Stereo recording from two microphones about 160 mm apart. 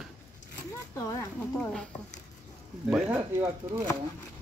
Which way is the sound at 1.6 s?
5° left (ahead or behind).